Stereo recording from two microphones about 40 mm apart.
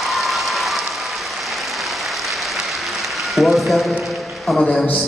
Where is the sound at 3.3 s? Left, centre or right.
Centre.